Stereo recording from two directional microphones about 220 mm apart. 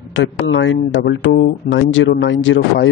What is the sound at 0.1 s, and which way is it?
Speech, 55° left (ahead or behind).